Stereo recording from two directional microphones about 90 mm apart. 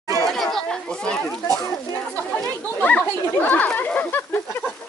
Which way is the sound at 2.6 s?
15° left (ahead or behind).